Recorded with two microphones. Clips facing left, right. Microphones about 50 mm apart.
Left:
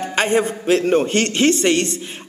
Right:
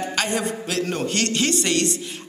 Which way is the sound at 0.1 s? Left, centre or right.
Left.